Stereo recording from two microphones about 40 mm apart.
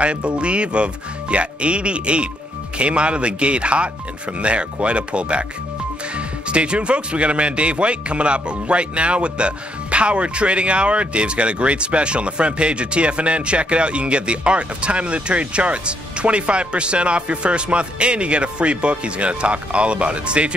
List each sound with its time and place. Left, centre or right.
0.0 s speech: right